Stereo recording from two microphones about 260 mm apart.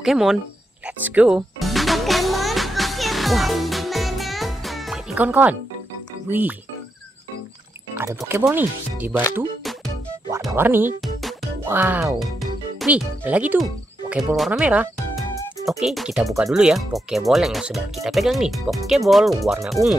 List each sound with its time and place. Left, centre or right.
0.0 s speech: centre
0.8 s music: centre
6.2 s speech: centre
8.2 s speech: centre
10.4 s speech: centre
11.0 s music: centre
15.8 s speech: centre